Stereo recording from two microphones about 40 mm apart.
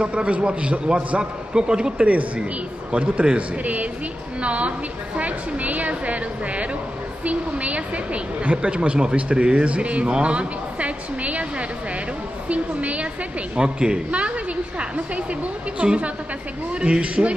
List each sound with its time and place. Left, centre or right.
0.0 s a woman's voice: right
2.0 s a woman's voice: right
10.1 s a sound: right
12.4 s a sound: right
13.6 s a woman's voice: right
15.8 s a woman's voice: right